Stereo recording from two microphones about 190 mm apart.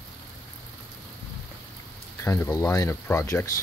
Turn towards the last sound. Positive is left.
turn(degrees=15)  # may be behind; listen again after turning